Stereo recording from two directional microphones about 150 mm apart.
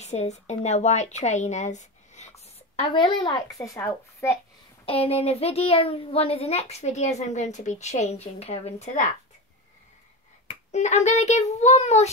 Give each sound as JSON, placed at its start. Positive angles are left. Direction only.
{"t": 0.0, "sound": "a woman's voice", "side_deg": 50}
{"t": 2.9, "sound": "a woman's voice", "side_deg": 30}
{"t": 4.8, "sound": "a child's voice", "side_deg": 40}
{"t": 10.7, "sound": "a child's voice", "side_deg": 50}